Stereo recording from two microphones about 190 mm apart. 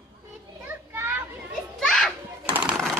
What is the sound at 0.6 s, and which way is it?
Children playing, 10° right (ahead or behind).